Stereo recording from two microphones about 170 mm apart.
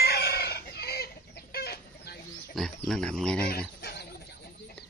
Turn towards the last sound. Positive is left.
turn(degrees=70)  # may be behind; listen again after turning